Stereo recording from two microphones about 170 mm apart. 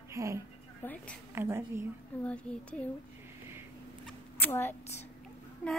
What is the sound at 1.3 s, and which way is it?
Speech, 15° right (ahead or behind).